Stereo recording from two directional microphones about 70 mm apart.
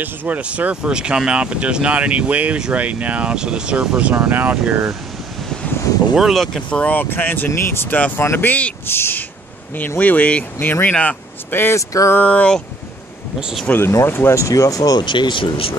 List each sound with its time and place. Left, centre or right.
0.0 s speech: right
6.1 s speech: centre
6.4 s speech: centre
6.8 s speech: left
7.9 s speech: left
8.8 s speech: left
9.8 s speech: left
11.7 s a sound: left
12.2 s speech: centre
13.4 s speech: centre
13.7 s speech: left
14.3 s speech: left